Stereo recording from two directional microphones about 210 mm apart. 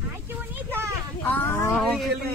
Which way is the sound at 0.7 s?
10° right (ahead or behind).